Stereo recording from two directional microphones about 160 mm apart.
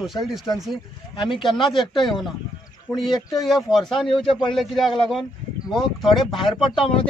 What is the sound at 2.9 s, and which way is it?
A man's voice, centre (ahead or behind).